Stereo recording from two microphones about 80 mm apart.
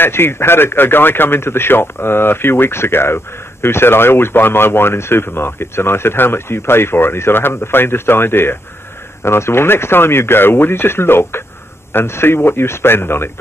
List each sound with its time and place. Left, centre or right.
0.0 s speech: left